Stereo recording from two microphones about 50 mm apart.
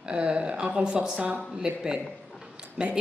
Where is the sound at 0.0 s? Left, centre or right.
Centre.